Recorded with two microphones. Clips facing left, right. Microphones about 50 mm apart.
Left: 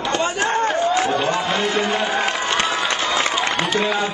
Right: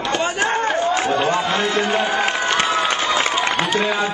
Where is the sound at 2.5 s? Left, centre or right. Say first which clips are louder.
Right 2 dB; centre.